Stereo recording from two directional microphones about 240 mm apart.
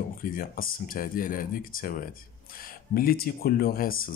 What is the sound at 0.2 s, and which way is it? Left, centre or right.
Speech, left.